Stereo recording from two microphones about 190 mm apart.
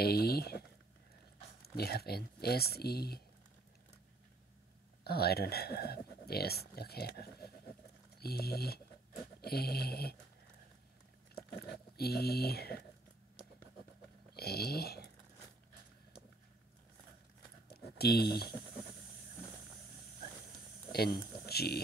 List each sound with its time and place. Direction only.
0.0 s speech: 55° left (ahead or behind)
5.0 s speech: 55° left (ahead or behind)
11.3 s speech: 55° left (ahead or behind)
14.3 s a sound: 55° left (ahead or behind)
17.6 s a sound: 55° left (ahead or behind)
20.9 s speech: 55° left (ahead or behind)